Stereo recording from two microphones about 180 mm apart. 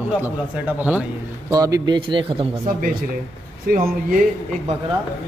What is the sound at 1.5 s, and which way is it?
Speech, 20° right (ahead or behind).